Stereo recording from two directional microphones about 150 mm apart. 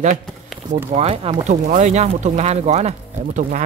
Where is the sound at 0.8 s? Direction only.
45° right (ahead or behind).